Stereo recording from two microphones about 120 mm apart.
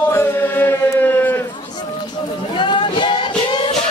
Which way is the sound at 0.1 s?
20° left (ahead or behind).